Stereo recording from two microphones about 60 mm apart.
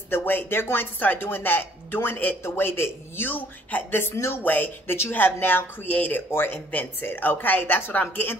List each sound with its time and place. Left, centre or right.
0.1 s a woman's voice: left
2.4 s a woman's voice: left
4.4 s a woman's voice: left
6.3 s a woman's voice: left